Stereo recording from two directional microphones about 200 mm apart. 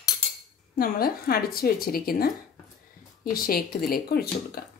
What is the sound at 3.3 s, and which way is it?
Speech, 45° left (ahead or behind).